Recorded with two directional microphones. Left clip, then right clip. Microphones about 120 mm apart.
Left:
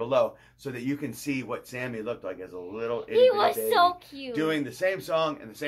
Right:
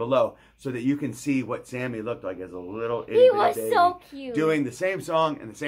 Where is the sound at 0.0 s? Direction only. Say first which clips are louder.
Right 2 dB; 40° right (ahead or behind).